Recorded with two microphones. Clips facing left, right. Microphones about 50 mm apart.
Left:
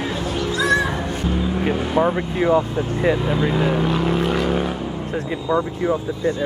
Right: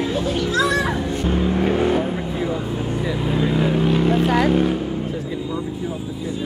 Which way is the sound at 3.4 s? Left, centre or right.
Centre.